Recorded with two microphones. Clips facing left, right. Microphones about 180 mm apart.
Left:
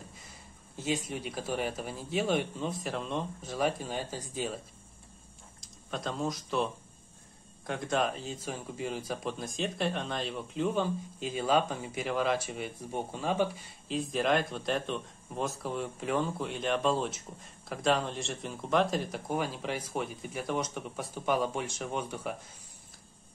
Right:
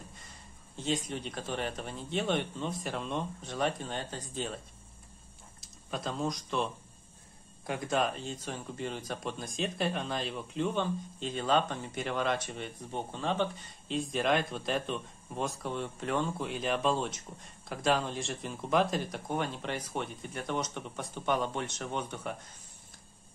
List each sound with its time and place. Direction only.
0.7 s speech: 5° left (ahead or behind)
5.6 s speech: centre (ahead or behind)